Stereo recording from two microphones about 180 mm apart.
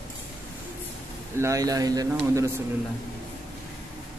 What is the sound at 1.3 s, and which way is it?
Speech, 15° right (ahead or behind).